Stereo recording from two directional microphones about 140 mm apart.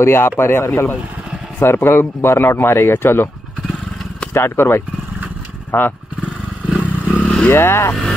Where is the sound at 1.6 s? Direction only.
20° left (ahead or behind).